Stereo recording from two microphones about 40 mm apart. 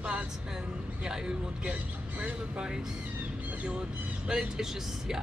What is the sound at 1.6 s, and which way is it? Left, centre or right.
Speech, right.